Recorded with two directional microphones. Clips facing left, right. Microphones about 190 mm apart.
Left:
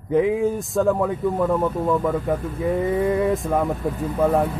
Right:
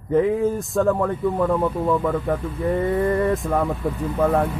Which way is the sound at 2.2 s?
5° left (ahead or behind).